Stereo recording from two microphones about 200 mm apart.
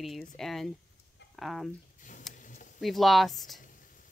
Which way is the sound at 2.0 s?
40° left (ahead or behind).